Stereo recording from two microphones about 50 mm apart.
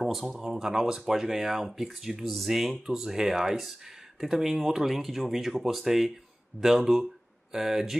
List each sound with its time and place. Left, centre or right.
0.0 s speech: centre
6.5 s speech: left
7.5 s speech: centre